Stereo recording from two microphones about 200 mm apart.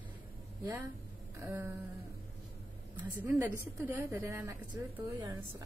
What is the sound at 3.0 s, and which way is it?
A woman's voice, 10° right (ahead or behind).